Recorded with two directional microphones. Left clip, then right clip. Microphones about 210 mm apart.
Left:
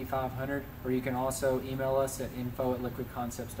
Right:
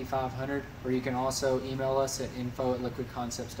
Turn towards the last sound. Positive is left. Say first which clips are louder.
# right 2 dB
turn(degrees=0)  # may be behind; listen again after turning